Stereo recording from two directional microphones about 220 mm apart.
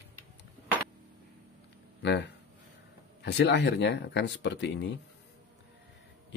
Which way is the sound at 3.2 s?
50° left (ahead or behind).